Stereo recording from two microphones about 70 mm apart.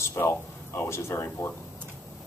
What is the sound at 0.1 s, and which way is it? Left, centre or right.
Speech, left.